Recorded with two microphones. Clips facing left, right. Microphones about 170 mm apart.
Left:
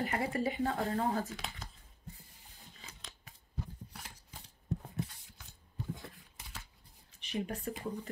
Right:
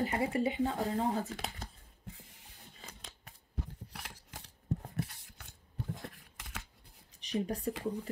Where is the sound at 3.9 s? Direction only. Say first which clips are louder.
Right 3 dB; 70° right (ahead or behind).